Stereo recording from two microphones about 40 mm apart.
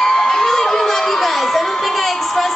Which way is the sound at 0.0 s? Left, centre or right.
Centre.